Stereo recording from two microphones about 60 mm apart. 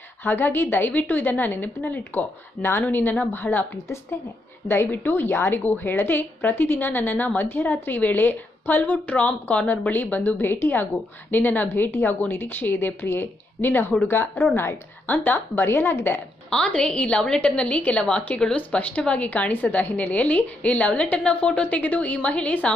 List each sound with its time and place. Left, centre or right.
0.2 s a woman's voice: left
4.9 s a woman's voice: left
5.6 s a woman's voice: left
16.4 s a woman's voice: centre